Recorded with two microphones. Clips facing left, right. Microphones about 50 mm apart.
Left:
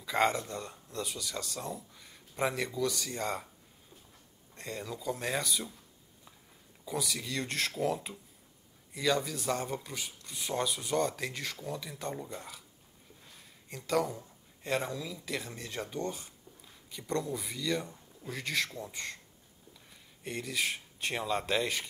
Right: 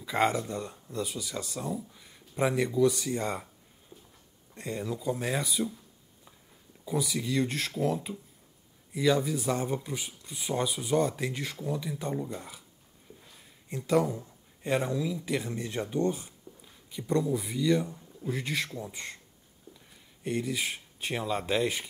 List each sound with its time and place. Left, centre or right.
0.0 s speech: centre
0.7 s speech: centre
3.9 s a sound: right
4.6 s speech: centre
6.8 s speech: centre
8.9 s speech: centre
13.2 s a sound: centre
13.7 s speech: centre
14.2 s a sound: centre
14.8 s speech: centre